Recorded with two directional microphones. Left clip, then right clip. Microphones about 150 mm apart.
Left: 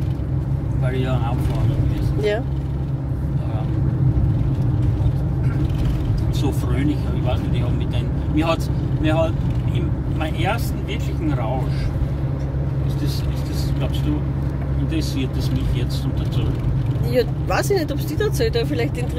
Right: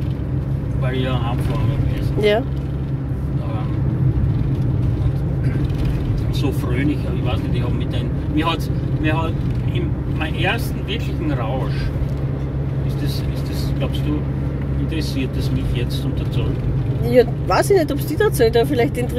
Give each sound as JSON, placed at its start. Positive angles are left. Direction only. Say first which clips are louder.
{"t": 2.3, "sound": "speech", "louder": "right 5 dB", "side_deg": -50}
{"t": 17.1, "sound": "speech", "louder": "right 6 dB", "side_deg": -35}